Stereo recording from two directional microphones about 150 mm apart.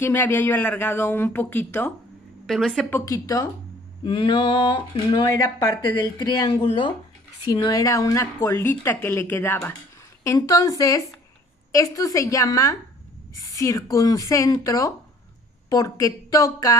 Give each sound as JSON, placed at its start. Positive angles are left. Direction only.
{"t": 0.0, "sound": "a woman's voice", "side_deg": 15}
{"t": 2.4, "sound": "speech", "side_deg": 0}
{"t": 2.9, "sound": "speech", "side_deg": 20}
{"t": 4.0, "sound": "a woman's voice", "side_deg": 35}